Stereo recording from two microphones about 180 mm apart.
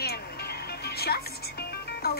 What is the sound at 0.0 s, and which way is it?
Music, 60° left (ahead or behind).